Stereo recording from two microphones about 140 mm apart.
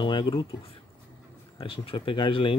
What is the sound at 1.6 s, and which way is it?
Speech, 40° left (ahead or behind).